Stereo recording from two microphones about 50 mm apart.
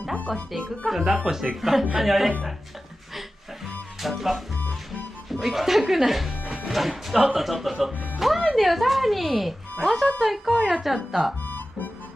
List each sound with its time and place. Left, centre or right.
0.8 s speech: centre
4.0 s speech: centre
11.4 s music: left